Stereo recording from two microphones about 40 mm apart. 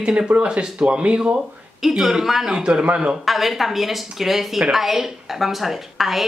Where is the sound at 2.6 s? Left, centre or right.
Centre.